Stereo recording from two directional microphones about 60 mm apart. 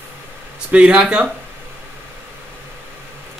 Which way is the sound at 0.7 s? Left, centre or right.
Centre.